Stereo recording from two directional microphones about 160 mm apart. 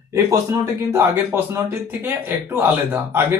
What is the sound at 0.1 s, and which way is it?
Speech, 20° right (ahead or behind).